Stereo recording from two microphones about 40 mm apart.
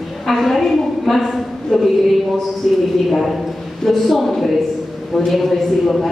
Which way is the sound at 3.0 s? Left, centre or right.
Centre.